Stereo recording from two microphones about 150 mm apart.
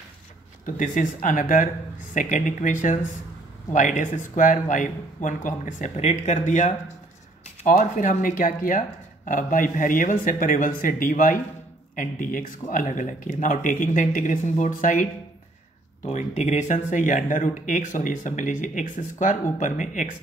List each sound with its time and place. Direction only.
0.7 s speech: 55° left (ahead or behind)
7.6 s speech: 65° left (ahead or behind)
16.0 s speech: 50° left (ahead or behind)